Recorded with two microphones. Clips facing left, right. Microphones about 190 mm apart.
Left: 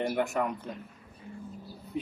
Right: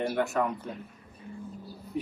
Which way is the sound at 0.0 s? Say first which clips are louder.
Right 1 dB; 15° left (ahead or behind).